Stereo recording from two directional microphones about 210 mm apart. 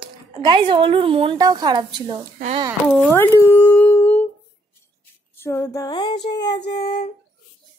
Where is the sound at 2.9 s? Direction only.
10° left (ahead or behind).